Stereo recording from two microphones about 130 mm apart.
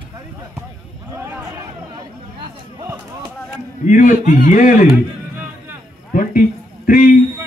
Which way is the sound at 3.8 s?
85° left.